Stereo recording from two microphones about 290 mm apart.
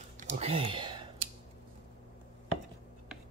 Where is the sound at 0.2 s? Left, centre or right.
Right.